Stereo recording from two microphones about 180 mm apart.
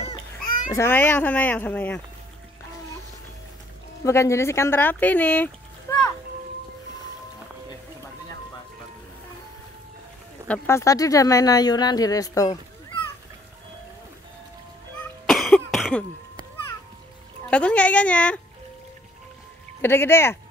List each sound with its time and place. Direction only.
0.7 s speech: 15° left (ahead or behind)
4.0 s speech: 15° left (ahead or behind)
10.5 s speech: 15° left (ahead or behind)
15.2 s cough: centre (ahead or behind)
17.5 s speech: 5° left (ahead or behind)
19.8 s speech: 15° left (ahead or behind)